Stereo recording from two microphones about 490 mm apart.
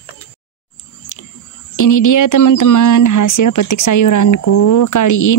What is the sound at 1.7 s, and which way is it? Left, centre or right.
Speech, left.